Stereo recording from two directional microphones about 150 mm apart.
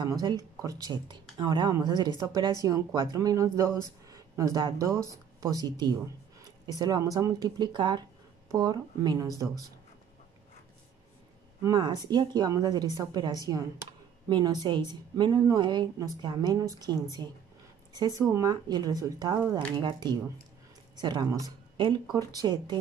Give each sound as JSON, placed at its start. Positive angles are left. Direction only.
{"t": 0.0, "sound": "speech", "side_deg": -25}
{"t": 11.6, "sound": "a woman's voice", "side_deg": -25}